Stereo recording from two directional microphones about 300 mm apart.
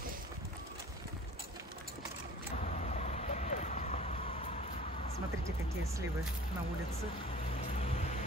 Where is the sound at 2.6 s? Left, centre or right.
Left.